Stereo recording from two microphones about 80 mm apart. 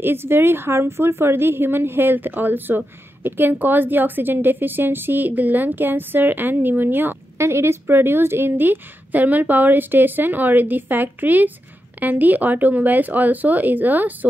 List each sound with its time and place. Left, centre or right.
0.0 s a woman's voice: right